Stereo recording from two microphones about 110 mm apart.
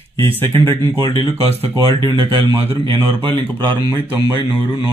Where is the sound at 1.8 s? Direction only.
45° right (ahead or behind).